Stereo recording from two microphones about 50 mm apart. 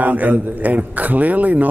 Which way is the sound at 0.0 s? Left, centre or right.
Right.